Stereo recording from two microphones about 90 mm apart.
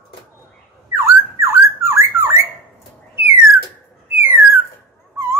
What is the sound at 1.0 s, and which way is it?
Squawk, 25° right (ahead or behind).